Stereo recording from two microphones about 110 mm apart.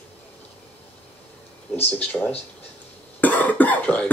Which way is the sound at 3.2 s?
15° left (ahead or behind).